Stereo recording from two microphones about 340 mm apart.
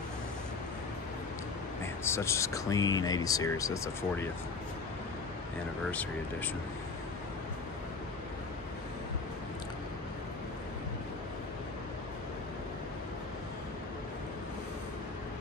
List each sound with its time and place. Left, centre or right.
2.0 s speech: centre
5.9 s speech: centre